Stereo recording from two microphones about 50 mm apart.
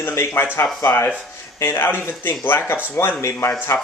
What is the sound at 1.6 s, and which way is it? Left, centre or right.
Speech, left.